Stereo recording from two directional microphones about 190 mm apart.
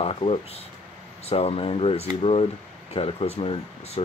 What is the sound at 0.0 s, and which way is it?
Speech, 30° left (ahead or behind).